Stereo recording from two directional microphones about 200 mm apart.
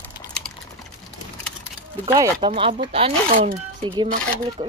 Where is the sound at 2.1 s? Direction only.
20° right (ahead or behind).